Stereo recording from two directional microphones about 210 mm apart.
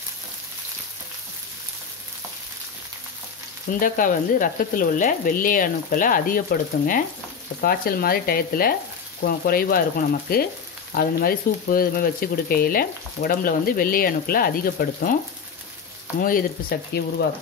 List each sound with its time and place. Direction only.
3.8 s speech: 40° left (ahead or behind)
16.2 s speech: 40° left (ahead or behind)